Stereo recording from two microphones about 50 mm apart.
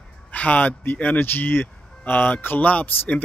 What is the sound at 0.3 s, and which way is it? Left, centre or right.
Speech, left.